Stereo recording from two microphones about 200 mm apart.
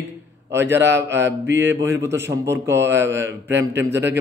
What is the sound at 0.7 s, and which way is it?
A man's voice, 60° right (ahead or behind).